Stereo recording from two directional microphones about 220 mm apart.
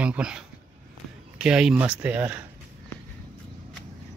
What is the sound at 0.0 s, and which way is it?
Speech, 5° right (ahead or behind).